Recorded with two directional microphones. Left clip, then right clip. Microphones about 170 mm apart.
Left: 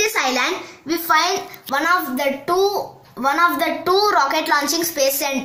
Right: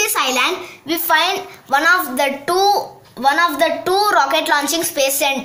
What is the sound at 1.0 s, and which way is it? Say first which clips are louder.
A child's voice: right 1 dB; 30° right (ahead or behind).